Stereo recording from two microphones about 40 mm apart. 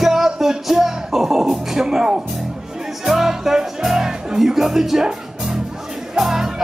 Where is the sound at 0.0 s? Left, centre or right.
Centre.